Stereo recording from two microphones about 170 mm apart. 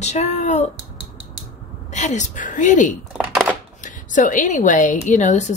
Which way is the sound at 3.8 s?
50° left (ahead or behind).